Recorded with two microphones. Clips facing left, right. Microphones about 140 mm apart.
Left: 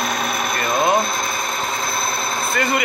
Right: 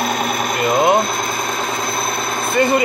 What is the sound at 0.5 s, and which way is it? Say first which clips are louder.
Sewing machine: right 4 dB; 20° right (ahead or behind).